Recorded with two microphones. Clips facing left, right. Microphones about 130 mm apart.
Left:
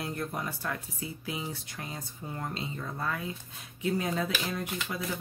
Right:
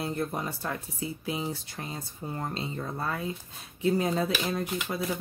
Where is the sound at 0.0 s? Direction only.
25° right (ahead or behind).